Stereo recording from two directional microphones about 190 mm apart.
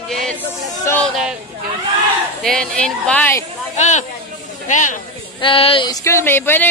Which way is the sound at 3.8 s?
40° left (ahead or behind).